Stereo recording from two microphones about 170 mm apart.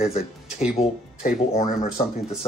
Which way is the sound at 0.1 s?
40° left (ahead or behind).